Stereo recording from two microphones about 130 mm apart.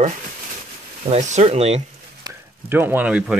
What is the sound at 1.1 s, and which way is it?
Speech, 60° right (ahead or behind).